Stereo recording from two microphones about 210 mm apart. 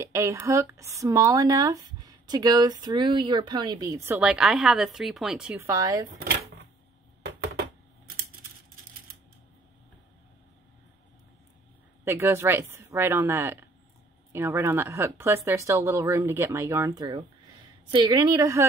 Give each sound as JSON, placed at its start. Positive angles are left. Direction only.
{"t": 0.0, "sound": "speech", "side_deg": -10}
{"t": 12.0, "sound": "a woman's voice", "side_deg": -10}